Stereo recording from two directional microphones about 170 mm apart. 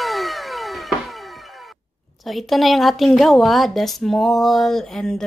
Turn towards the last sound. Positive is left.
turn(degrees=0)  # may be behind; listen again after turning